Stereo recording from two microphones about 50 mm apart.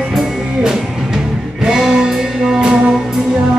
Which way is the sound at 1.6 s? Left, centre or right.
Centre.